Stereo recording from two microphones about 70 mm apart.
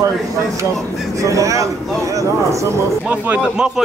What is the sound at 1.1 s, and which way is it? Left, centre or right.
A man's voice, right.